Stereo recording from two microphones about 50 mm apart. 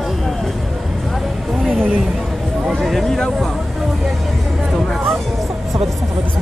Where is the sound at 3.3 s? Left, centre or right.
Centre.